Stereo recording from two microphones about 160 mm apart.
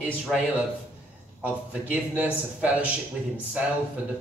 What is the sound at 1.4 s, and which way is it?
Speech, 10° right (ahead or behind).